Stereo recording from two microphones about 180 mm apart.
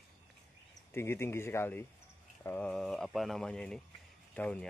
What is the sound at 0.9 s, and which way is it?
Speech, 15° left (ahead or behind).